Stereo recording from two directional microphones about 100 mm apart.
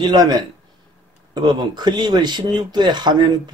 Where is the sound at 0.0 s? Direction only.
45° right (ahead or behind).